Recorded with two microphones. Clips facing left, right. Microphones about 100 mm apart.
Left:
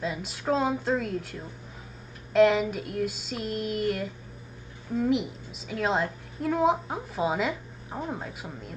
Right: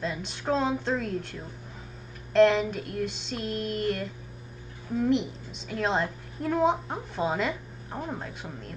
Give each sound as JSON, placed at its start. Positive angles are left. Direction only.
{"t": 0.0, "sound": "a woman's voice", "side_deg": 5}